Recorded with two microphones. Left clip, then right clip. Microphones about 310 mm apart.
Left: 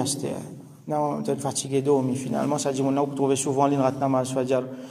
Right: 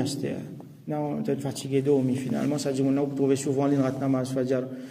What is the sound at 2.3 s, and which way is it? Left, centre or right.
Speech, left.